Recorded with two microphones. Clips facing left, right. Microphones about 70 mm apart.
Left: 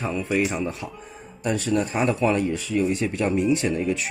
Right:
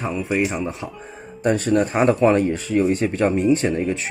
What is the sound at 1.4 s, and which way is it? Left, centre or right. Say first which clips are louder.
Speech: right 5 dB; right.